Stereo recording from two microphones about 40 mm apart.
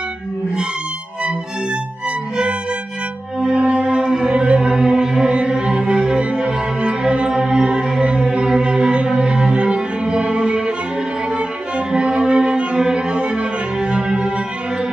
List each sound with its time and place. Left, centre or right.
3.3 s music: right
11.9 s cello: right
13.3 s music: right